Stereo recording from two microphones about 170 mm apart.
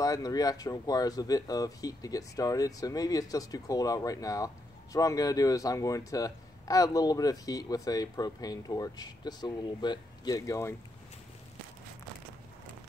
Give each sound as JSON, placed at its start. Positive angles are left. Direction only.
{"t": 0.0, "sound": "speech", "side_deg": 20}